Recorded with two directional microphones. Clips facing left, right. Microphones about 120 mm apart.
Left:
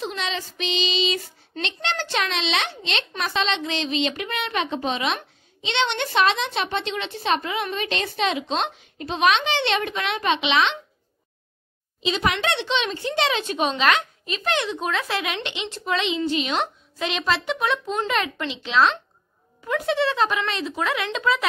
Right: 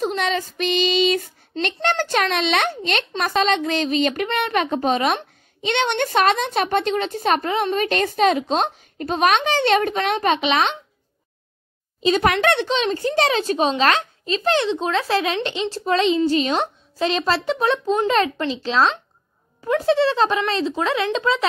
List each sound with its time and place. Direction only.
0.0 s speech: 45° right (ahead or behind)
12.0 s speech: 50° right (ahead or behind); by 21.5 s 30° right (ahead or behind)